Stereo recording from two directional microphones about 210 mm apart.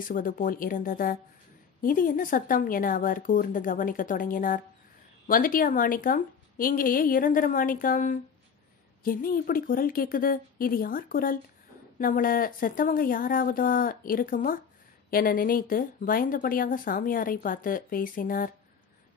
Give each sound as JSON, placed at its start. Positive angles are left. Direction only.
{"t": 0.1, "sound": "speech", "side_deg": 40}